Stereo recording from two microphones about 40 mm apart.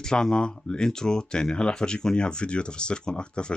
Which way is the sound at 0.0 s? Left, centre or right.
Centre.